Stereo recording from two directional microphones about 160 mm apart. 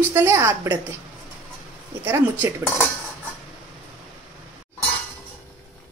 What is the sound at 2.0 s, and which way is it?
Speech, 15° right (ahead or behind).